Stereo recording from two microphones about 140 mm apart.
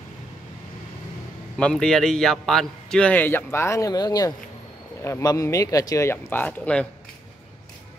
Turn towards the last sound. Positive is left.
turn(degrees=10)  # may be behind; listen again after turning